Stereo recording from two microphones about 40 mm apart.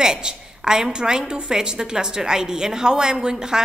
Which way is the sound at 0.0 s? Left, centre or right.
Centre.